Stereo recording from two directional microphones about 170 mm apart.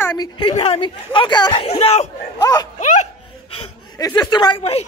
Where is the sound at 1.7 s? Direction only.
40° left (ahead or behind).